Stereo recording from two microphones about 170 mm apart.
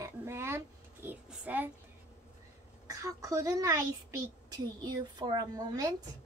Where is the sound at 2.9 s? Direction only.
20° right (ahead or behind).